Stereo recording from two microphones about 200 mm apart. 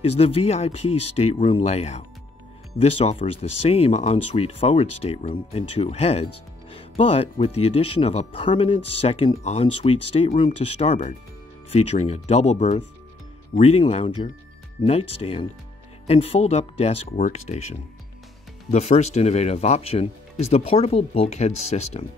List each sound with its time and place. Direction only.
0.0 s speech: 30° left (ahead or behind)
18.7 s speech: 35° left (ahead or behind)